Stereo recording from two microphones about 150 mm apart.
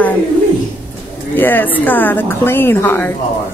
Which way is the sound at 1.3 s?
15° left (ahead or behind).